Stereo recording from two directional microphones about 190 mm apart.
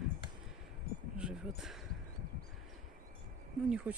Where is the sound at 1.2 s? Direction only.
5° right (ahead or behind).